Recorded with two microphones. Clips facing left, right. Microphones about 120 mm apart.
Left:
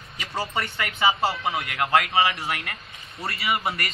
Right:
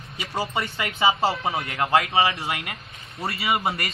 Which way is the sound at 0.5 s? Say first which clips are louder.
Right 1 dB; 25° right (ahead or behind).